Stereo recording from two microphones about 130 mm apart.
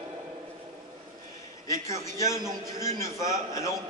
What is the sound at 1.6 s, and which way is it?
A man's voice, 25° left (ahead or behind).